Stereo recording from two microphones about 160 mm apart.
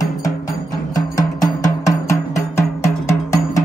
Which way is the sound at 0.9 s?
20° left (ahead or behind).